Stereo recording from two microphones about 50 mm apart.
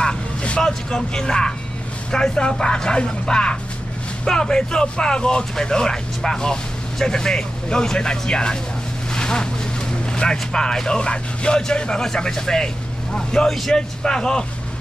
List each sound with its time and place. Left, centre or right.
0.0 s vehicle: centre
2.0 s speech: centre
9.1 s vehicle: centre
10.1 s speech: centre